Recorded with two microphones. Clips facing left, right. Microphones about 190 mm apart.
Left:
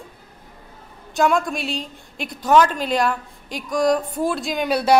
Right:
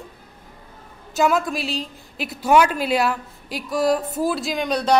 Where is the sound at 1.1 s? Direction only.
5° right (ahead or behind).